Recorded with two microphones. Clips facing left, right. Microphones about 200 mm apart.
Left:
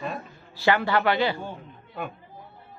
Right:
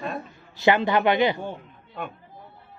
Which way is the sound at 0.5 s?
20° right (ahead or behind).